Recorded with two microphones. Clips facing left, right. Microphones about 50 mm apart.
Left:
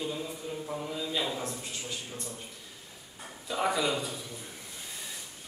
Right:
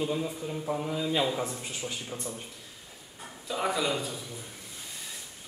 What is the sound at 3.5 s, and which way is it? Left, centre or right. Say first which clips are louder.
Speech: even; centre.